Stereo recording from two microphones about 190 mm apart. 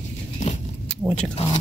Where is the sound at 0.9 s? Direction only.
5° left (ahead or behind).